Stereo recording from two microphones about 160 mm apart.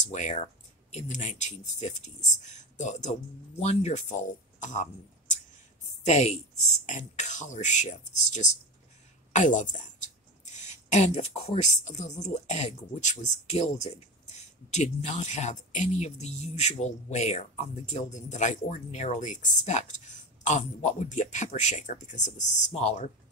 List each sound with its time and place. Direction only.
0.0 s a sound: 45° left (ahead or behind)
0.9 s speech: 50° left (ahead or behind)
6.0 s speech: 45° left (ahead or behind)